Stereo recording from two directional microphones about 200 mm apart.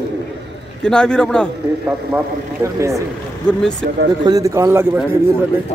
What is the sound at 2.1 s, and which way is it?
Speech, 15° right (ahead or behind).